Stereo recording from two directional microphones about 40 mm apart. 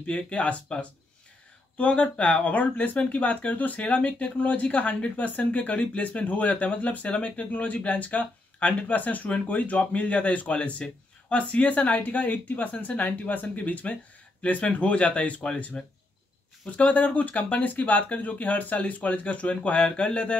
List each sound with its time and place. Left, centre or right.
0.0 s speech: left